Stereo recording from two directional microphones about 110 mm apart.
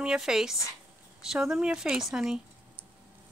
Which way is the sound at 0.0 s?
5° right (ahead or behind).